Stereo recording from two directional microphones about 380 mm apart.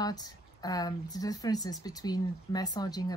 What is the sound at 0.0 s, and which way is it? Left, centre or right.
Speech, centre.